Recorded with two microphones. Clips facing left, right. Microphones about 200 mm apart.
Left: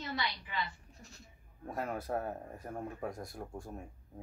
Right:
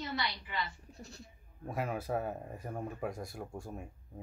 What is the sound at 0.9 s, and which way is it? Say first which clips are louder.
Speech: right 6 dB; 35° right (ahead or behind).